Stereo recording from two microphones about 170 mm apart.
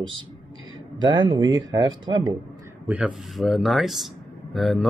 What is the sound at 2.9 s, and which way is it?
Speech, centre (ahead or behind).